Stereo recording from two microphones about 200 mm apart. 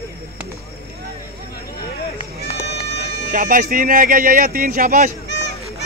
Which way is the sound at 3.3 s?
45° right (ahead or behind).